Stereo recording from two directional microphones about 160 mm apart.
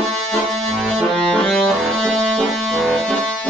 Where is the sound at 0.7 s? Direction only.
Centre (ahead or behind).